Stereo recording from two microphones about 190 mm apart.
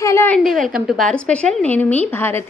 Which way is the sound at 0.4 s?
Centre (ahead or behind).